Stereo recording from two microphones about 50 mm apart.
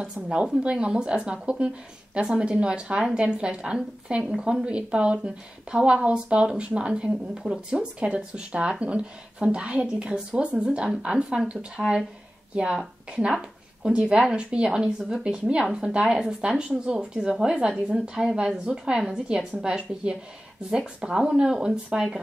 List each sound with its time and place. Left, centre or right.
0.0 s a woman's voice: centre